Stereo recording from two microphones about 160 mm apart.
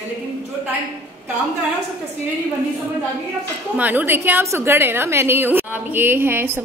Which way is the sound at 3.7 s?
10° right (ahead or behind).